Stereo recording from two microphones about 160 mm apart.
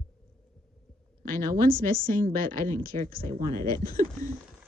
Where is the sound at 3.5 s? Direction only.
20° left (ahead or behind).